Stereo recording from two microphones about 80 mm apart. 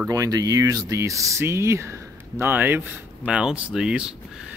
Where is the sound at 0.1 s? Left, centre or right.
Right.